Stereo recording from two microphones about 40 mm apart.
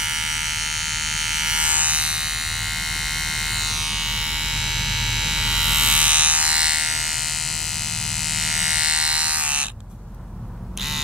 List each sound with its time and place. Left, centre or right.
0.0 s electric shaver: centre
1.7 s electric shaver: right
3.2 s electric shaver: centre
5.9 s electric shaver: right
6.8 s electric shaver: centre
8.4 s electric shaver: centre
8.8 s electric shaver: right